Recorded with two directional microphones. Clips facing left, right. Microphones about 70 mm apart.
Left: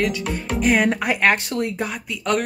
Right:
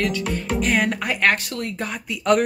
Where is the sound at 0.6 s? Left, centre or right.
Centre.